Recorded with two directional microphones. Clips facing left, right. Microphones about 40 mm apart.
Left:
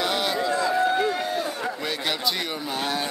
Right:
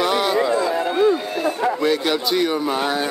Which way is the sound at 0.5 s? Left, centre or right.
Right.